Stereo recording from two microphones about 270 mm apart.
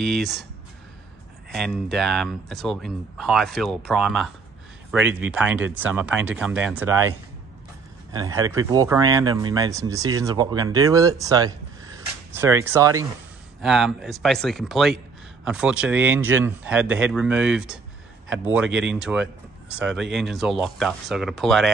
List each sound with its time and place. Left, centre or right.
0.0 s speech: centre
1.5 s speech: centre
18.7 s speech: right
20.0 s speech: centre